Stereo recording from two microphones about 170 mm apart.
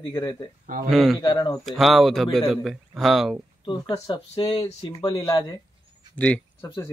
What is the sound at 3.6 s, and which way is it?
Speech, 25° left (ahead or behind).